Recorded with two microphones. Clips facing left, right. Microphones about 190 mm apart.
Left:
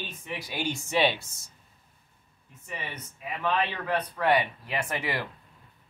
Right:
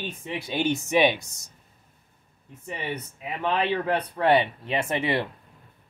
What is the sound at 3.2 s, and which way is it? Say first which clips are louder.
Speech: right 2 dB; 30° right (ahead or behind).